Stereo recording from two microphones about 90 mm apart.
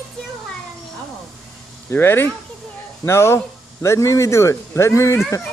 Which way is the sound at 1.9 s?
25° left (ahead or behind).